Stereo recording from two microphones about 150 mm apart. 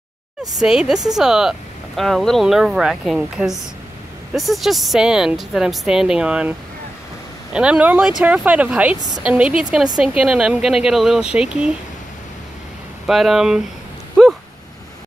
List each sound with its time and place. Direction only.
0.6 s speech: 5° right (ahead or behind)
7.5 s speech: 5° right (ahead or behind)
13.0 s speech: centre (ahead or behind)